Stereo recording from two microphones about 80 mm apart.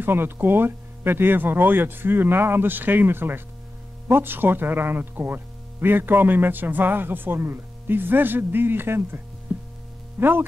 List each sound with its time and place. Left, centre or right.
0.0 s speech: right
9.5 s heart sounds: right
10.1 s speech: right